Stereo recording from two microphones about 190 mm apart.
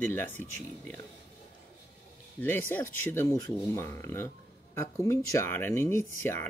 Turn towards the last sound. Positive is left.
turn(degrees=15)  # may be behind; listen again after turning